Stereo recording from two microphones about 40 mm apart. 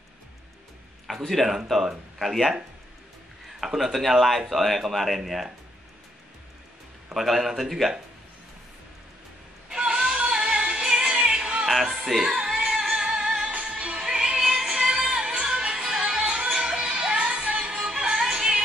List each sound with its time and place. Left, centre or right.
1.0 s speech: centre
3.6 s speech: centre
7.2 s speech: centre
9.7 s a sound: right
10.3 s music: right
10.8 s music: right
13.0 s music: right